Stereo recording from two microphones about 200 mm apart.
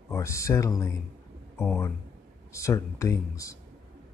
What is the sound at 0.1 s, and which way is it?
Speech, 15° left (ahead or behind).